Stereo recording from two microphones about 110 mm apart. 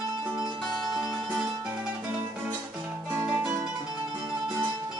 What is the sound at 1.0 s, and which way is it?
Music, centre (ahead or behind).